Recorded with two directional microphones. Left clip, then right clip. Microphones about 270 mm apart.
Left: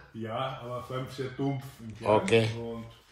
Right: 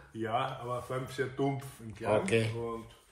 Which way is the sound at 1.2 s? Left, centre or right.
Centre.